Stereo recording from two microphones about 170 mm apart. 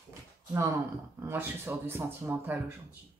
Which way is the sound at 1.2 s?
15° right (ahead or behind).